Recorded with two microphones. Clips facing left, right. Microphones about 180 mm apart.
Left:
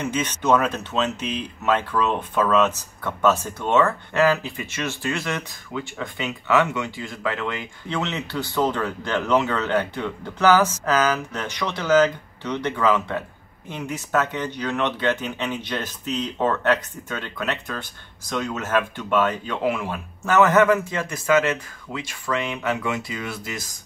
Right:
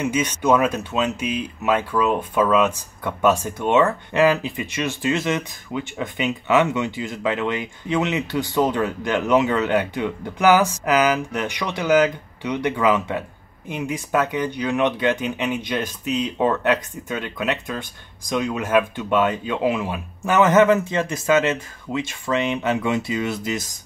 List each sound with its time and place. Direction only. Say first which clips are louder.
0.0 s speech: right 3 dB; 10° right (ahead or behind)